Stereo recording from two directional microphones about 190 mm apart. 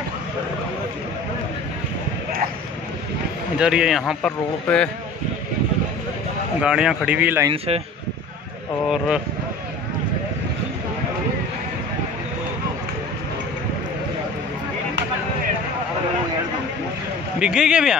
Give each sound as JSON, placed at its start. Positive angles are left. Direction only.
{"t": 3.5, "sound": "a man's voice", "side_deg": -5}
{"t": 6.6, "sound": "a man's voice", "side_deg": -5}
{"t": 7.4, "sound": "a man's voice", "side_deg": -30}
{"t": 8.8, "sound": "a man's voice", "side_deg": 0}
{"t": 17.4, "sound": "a man's voice", "side_deg": -5}